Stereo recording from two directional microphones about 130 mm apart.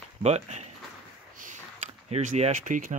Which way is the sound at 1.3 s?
90° right.